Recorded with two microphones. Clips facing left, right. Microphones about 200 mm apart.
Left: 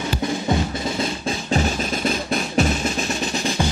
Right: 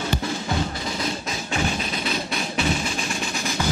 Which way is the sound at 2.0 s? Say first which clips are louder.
Left 5 dB; 45° left (ahead or behind).